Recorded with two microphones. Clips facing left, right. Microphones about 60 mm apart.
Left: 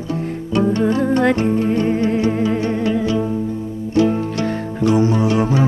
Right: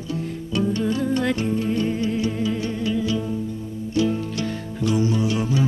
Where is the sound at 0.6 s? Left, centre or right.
Left.